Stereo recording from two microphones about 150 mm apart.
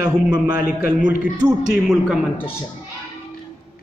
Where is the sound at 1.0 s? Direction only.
5° right (ahead or behind).